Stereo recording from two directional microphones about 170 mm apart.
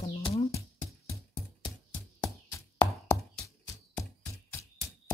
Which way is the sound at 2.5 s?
20° left (ahead or behind).